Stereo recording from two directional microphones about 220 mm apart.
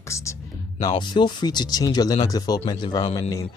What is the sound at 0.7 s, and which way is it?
Speech, 20° left (ahead or behind).